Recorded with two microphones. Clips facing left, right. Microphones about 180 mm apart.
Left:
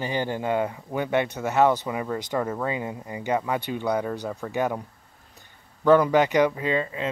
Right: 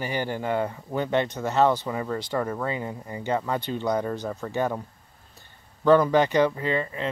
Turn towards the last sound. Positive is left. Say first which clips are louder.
# left 1 dB
turn(degrees=15)  # may be behind; listen again after turning